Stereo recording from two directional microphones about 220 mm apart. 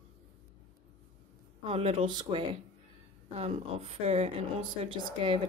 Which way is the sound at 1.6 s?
25° right (ahead or behind).